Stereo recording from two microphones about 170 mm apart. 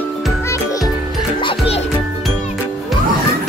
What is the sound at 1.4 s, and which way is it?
Music, 35° left (ahead or behind).